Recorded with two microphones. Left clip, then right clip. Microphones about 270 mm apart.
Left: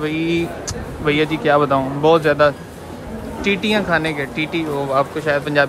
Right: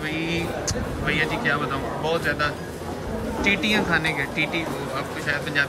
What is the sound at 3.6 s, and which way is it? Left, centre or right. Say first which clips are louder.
Speech: left 4 dB; centre.